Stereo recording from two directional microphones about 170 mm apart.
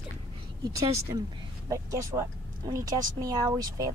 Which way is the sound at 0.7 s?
20° right (ahead or behind).